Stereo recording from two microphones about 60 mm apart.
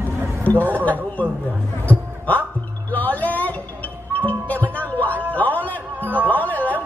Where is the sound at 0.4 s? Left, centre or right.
Left.